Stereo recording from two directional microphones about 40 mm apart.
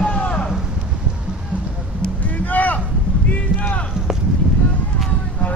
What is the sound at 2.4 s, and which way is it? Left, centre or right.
Boat, left.